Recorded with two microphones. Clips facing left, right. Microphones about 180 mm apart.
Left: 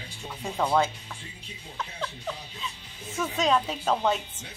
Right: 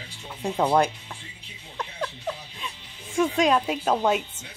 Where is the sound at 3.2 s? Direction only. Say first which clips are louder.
Right 4 dB; 10° right (ahead or behind).